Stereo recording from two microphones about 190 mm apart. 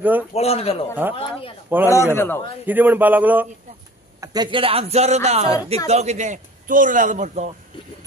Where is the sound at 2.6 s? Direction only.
10° right (ahead or behind).